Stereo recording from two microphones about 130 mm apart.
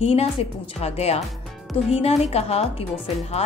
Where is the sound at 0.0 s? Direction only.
50° left (ahead or behind).